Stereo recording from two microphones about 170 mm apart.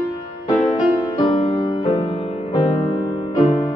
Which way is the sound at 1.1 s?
30° left (ahead or behind).